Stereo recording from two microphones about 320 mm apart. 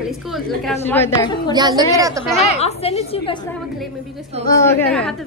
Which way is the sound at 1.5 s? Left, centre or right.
Centre.